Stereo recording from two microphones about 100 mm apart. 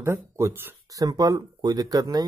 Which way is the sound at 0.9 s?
35° right (ahead or behind).